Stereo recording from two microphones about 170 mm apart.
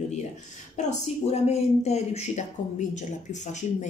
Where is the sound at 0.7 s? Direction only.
40° left (ahead or behind).